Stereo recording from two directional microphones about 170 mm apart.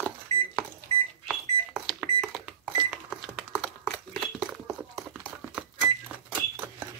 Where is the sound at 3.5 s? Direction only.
5° left (ahead or behind).